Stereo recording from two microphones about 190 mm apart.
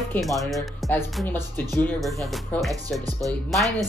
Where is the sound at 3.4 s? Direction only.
Centre (ahead or behind).